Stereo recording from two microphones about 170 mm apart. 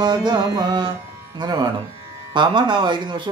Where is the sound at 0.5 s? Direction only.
25° right (ahead or behind).